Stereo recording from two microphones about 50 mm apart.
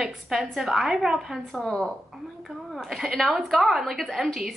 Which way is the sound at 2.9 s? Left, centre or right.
Centre.